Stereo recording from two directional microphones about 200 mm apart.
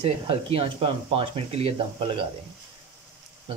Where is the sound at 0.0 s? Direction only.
30° right (ahead or behind).